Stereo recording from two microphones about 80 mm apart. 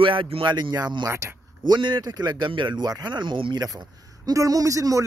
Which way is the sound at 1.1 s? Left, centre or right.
Right.